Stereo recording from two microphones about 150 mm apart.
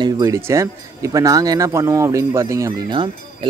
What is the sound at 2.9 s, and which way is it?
Speech, 35° right (ahead or behind).